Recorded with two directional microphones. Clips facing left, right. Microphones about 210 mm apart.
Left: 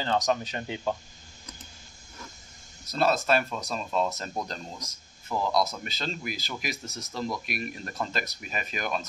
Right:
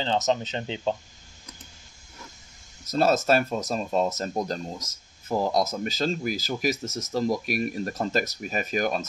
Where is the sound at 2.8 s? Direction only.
40° right (ahead or behind).